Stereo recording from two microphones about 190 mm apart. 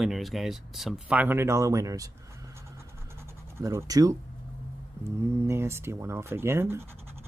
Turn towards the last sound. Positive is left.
turn(degrees=-15)  # may be behind; listen again after turning